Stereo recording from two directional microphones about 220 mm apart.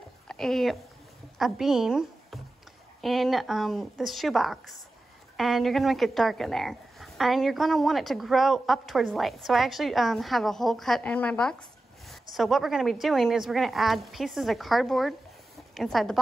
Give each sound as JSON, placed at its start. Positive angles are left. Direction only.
{"t": 0.3, "sound": "a woman's voice", "side_deg": 0}